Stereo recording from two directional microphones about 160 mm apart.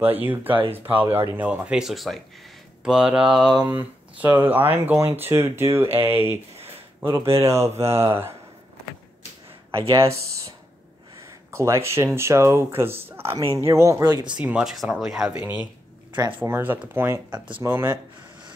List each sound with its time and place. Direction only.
0.0 s speech: 10° right (ahead or behind)
9.9 s speech: 40° right (ahead or behind)
11.1 s speech: 20° right (ahead or behind)
14.2 s speech: 5° right (ahead or behind)
15.3 s speech: 15° right (ahead or behind)